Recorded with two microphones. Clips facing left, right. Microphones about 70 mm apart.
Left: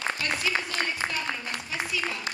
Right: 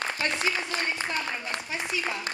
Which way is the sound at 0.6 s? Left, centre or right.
Right.